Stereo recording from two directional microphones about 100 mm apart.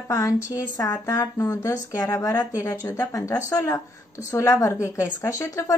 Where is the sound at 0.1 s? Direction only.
30° left (ahead or behind).